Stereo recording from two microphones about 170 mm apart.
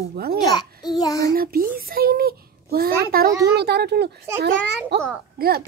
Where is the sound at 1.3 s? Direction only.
60° right (ahead or behind).